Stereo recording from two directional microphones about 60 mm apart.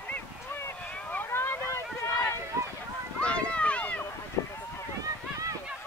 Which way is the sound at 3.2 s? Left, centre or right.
Centre.